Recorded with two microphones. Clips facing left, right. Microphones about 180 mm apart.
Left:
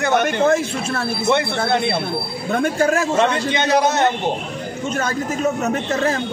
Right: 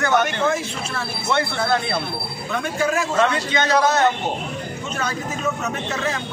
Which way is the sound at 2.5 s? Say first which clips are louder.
Left 5 dB; 50° left (ahead or behind).